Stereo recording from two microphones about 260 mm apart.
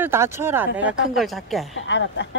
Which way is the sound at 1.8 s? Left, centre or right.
Left.